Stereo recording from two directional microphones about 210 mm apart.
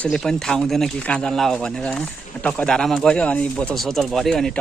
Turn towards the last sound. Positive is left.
turn(degrees=0)  # may be behind; listen again after turning